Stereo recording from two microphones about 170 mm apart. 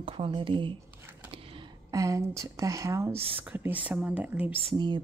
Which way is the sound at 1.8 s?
20° right (ahead or behind).